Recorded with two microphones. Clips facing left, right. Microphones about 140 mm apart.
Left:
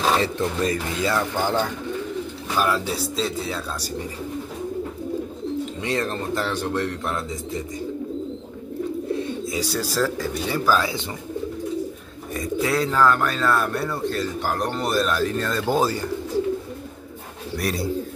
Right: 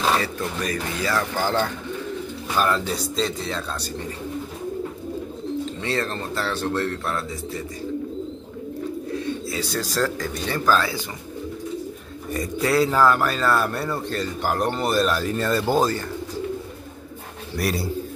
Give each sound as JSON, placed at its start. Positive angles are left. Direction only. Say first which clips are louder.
{"t": 0.2, "sound": "a man's voice", "louder": "left 4 dB", "side_deg": 25}
{"t": 5.8, "sound": "a man's voice", "louder": "left 1 dB", "side_deg": 15}
{"t": 9.1, "sound": "speech", "louder": "left 2 dB", "side_deg": 15}
{"t": 12.4, "sound": "a man's voice", "louder": "right 2 dB", "side_deg": 0}
{"t": 17.6, "sound": "a man's voice", "louder": "right 1 dB", "side_deg": -5}